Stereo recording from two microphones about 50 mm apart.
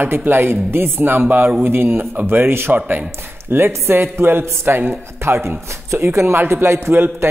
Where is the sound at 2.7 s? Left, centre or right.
Right.